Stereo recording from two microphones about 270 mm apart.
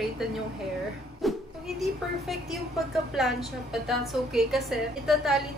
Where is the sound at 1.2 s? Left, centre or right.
Centre.